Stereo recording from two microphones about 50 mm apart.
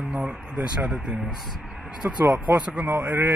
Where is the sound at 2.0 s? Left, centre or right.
Right.